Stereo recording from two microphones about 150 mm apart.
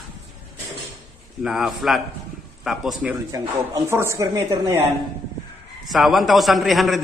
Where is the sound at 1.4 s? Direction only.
5° right (ahead or behind).